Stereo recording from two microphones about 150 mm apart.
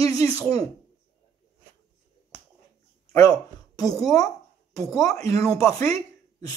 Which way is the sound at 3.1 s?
25° left (ahead or behind).